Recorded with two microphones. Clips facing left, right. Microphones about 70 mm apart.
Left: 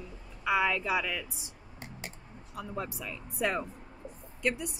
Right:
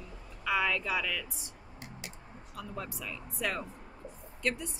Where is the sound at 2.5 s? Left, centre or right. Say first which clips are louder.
Left 3 dB; left.